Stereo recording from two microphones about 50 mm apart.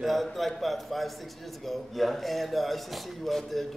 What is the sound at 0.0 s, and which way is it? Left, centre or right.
A man's voice, centre.